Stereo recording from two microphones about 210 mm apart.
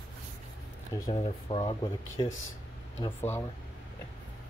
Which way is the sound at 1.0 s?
25° left (ahead or behind).